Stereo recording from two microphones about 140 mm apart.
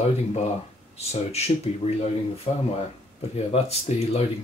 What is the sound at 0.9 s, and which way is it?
Speech, 50° left (ahead or behind).